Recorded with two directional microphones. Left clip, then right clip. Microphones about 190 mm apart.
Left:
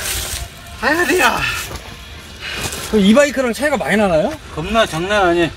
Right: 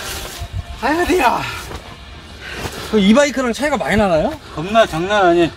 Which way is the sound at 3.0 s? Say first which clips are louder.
Left 1 dB; 40° left (ahead or behind).